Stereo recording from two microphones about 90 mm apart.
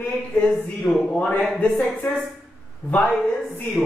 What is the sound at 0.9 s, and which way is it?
Speech, centre (ahead or behind).